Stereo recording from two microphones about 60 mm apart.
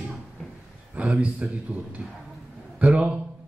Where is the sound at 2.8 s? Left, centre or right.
Right.